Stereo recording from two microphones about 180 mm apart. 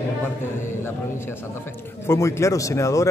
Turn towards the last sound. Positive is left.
turn(degrees=15)  # may be behind; listen again after turning